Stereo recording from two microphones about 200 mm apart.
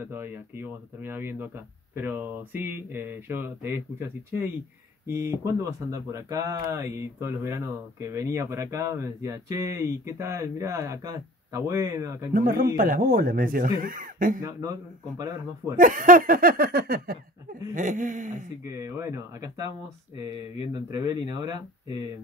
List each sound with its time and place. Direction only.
0.0 s speech: 10° right (ahead or behind)
5.0 s speech: 15° right (ahead or behind)
12.3 s a sound: 45° right (ahead or behind)
14.4 s speech: 15° right (ahead or behind)
15.8 s a sound: 40° right (ahead or behind)
18.6 s speech: 15° right (ahead or behind)
20.9 s speech: 20° right (ahead or behind)